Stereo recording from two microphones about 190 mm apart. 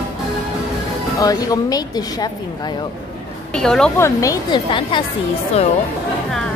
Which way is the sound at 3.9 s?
15° left (ahead or behind).